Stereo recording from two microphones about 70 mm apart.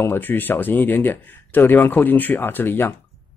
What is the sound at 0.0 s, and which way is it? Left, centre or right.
Speech, left.